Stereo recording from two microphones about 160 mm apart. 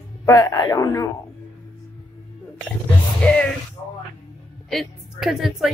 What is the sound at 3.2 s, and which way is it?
Music, 10° left (ahead or behind).